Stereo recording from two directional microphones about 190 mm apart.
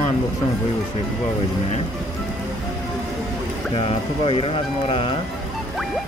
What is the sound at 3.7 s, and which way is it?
Speech, 30° left (ahead or behind).